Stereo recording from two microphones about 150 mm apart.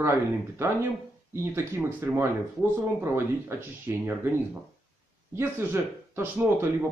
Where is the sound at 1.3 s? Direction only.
15° right (ahead or behind).